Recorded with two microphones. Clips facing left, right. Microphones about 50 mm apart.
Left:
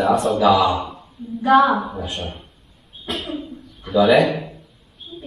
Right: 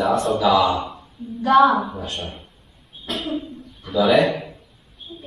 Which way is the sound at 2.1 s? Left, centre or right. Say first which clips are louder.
Left 2 dB; centre.